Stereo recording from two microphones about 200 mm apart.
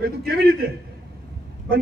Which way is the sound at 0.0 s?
50° right (ahead or behind).